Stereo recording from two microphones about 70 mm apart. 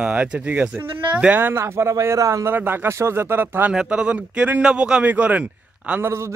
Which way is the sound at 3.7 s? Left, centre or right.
Centre.